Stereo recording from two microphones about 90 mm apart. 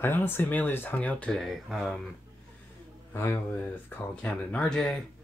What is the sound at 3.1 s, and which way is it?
Speech, 25° left (ahead or behind).